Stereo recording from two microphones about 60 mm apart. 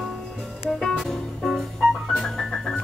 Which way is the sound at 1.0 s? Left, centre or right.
Centre.